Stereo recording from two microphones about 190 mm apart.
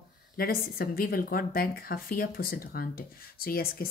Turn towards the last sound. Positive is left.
turn(degrees=50)  # may be behind; listen again after turning